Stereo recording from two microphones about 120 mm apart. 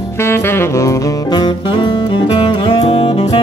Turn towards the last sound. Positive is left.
turn(degrees=50)  # may be behind; listen again after turning